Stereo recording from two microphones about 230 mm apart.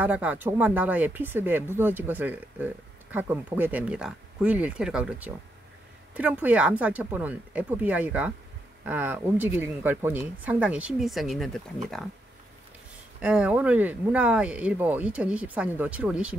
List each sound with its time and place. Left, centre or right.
0.0 s speech: centre
13.2 s speech: centre